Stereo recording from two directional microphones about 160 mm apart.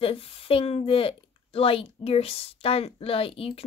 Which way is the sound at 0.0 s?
35° left (ahead or behind).